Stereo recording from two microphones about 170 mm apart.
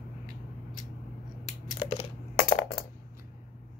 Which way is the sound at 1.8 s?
30° left (ahead or behind).